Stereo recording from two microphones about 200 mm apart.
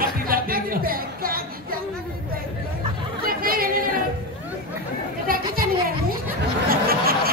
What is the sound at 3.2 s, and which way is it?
Chatter, 45° right (ahead or behind).